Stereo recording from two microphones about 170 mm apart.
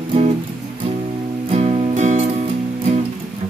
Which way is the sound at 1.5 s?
40° right (ahead or behind).